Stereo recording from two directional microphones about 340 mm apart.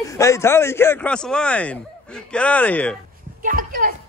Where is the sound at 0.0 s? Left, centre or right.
Centre.